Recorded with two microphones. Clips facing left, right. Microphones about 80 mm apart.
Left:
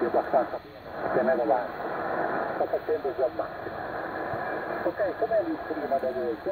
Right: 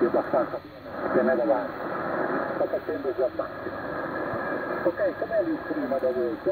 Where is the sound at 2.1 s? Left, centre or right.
Centre.